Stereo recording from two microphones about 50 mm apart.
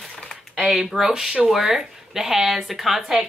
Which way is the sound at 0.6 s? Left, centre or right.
Centre.